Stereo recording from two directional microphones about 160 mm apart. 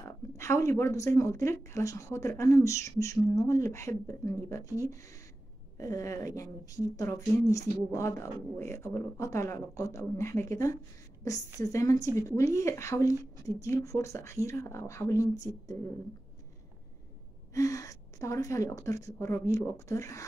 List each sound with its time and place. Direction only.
0.0 s speech: 20° left (ahead or behind)
17.6 s speech: 20° left (ahead or behind)